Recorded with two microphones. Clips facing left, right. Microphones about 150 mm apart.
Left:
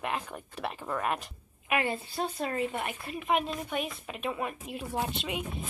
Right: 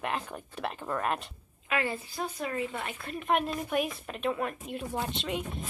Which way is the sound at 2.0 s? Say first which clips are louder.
Left 2 dB; 30° left (ahead or behind).